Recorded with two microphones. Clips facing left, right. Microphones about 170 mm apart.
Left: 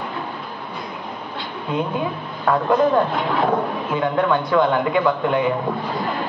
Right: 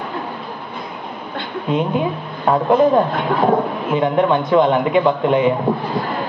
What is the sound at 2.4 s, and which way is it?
A woman's voice, 20° right (ahead or behind).